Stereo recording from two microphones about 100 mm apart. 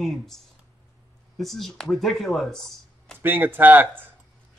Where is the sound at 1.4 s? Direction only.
5° left (ahead or behind).